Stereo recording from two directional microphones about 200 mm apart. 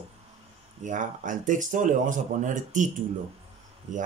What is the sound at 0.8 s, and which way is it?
A man's voice, 40° right (ahead or behind).